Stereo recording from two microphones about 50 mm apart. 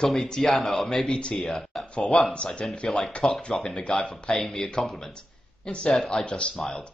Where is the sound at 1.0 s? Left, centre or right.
Left.